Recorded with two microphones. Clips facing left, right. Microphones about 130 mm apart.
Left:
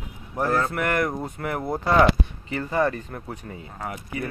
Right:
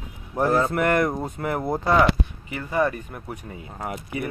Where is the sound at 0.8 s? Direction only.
25° right (ahead or behind).